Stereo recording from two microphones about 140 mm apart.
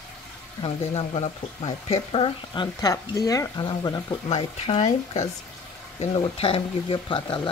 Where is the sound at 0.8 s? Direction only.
45° left (ahead or behind).